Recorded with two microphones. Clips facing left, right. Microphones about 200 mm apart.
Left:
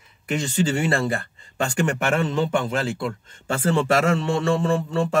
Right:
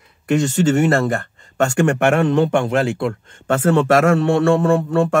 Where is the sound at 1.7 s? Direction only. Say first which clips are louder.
Right 6 dB; 60° right (ahead or behind).